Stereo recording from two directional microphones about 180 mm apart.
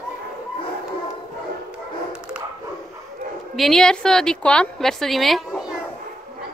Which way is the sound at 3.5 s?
Centre (ahead or behind).